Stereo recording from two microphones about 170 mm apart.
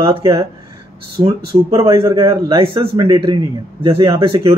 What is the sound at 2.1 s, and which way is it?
Speech, 15° right (ahead or behind).